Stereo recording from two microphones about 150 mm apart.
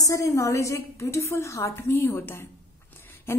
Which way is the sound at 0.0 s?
20° left (ahead or behind).